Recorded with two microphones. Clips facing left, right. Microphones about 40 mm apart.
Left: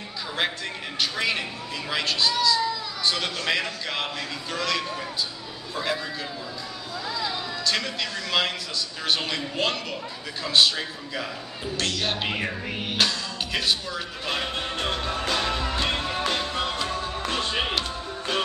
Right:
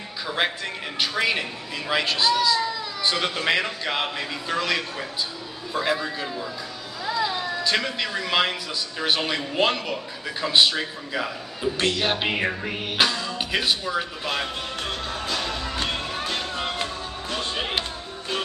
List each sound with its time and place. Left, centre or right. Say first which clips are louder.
0.4 s speech: right 2 dB; centre
7.1 s a sound: right 5 dB; centre
9.0 s speech: right 3 dB; centre
14.8 s music: left 3 dB; left
16.9 s music: left 3 dB; left